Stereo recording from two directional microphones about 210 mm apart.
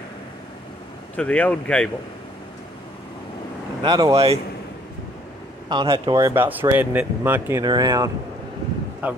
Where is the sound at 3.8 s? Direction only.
20° right (ahead or behind).